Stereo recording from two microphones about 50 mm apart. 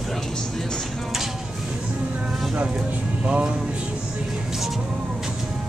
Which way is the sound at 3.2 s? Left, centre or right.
Right.